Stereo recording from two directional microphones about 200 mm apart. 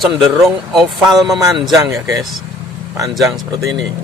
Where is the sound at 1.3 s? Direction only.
15° right (ahead or behind).